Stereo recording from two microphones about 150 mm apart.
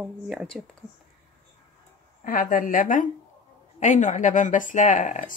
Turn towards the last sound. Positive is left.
turn(degrees=55)  # may be behind; listen again after turning